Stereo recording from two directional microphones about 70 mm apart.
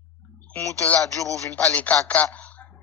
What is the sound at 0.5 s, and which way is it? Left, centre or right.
Speech, left.